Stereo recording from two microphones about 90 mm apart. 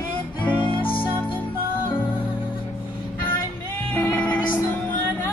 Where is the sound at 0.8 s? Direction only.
75° left (ahead or behind).